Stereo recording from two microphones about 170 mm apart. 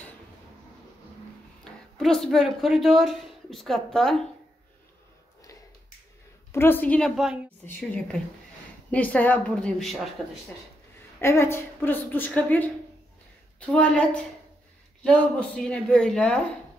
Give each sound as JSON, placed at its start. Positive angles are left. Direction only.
{"t": 1.6, "sound": "speech", "side_deg": 5}
{"t": 6.5, "sound": "a woman's voice", "side_deg": 10}
{"t": 11.1, "sound": "a woman's voice", "side_deg": 15}